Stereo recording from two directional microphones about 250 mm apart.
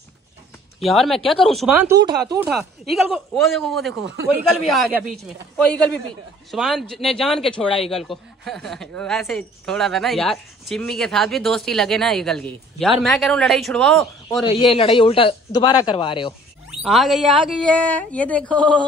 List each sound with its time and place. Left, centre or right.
0.7 s a woman's voice: centre
2.0 s speech: centre
2.4 s a woman's voice: centre
14.6 s speech: left
16.8 s a woman's voice: centre